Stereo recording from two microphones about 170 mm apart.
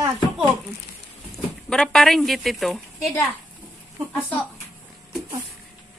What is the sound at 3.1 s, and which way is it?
Speech, 15° left (ahead or behind).